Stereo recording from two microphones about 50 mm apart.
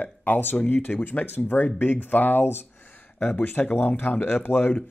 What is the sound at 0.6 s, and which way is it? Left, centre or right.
Speech, left.